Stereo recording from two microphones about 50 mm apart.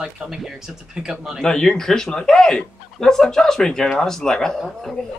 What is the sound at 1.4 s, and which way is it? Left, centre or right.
Speech, centre.